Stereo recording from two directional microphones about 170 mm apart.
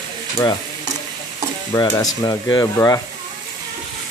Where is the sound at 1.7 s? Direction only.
20° left (ahead or behind).